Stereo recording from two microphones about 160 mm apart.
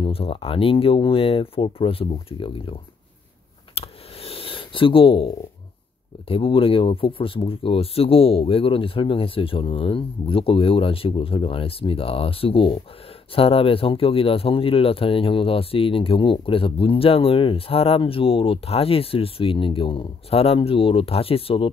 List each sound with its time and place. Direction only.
0.0 s speech: 35° left (ahead or behind)
3.7 s a sound: 40° left (ahead or behind)
6.2 s speech: 35° left (ahead or behind)